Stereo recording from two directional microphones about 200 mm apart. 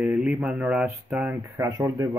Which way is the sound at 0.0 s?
5° right (ahead or behind).